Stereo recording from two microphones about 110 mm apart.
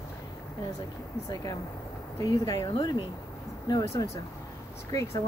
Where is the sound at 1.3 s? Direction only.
35° left (ahead or behind).